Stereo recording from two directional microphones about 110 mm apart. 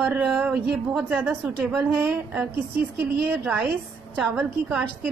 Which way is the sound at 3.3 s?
Centre (ahead or behind).